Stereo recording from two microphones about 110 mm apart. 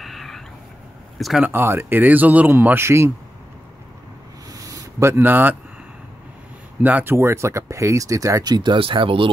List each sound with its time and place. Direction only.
0.0 s a sound: centre (ahead or behind)
1.1 s speech: centre (ahead or behind)
1.4 s speech: 20° right (ahead or behind)
4.5 s a sound: 30° right (ahead or behind); by 5.6 s 15° right (ahead or behind)
6.8 s speech: 15° right (ahead or behind); by 8.7 s 40° right (ahead or behind)
8.7 s speech: 55° right (ahead or behind)